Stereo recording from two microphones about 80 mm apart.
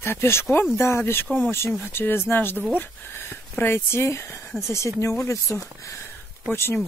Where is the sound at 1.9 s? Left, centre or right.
Left.